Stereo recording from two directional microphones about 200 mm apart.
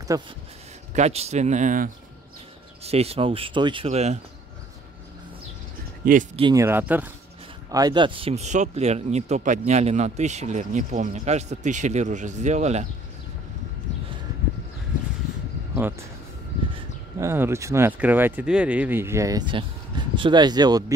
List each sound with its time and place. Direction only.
0.1 s speech: 15° right (ahead or behind)
0.9 s speech: 35° right (ahead or behind)
6.0 s speech: 45° right (ahead or behind)
6.5 s speech: 10° right (ahead or behind)
7.7 s speech: 20° right (ahead or behind)
15.7 s speech: 10° right (ahead or behind)
17.2 s speech: 15° right (ahead or behind)